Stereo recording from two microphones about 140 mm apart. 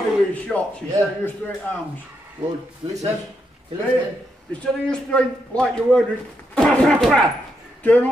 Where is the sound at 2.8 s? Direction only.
40° right (ahead or behind).